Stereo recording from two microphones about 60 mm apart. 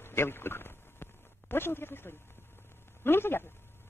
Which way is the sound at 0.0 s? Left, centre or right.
Left.